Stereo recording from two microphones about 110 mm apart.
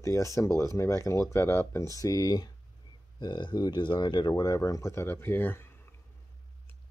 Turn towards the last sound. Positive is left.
turn(degrees=20)  # may be behind; listen again after turning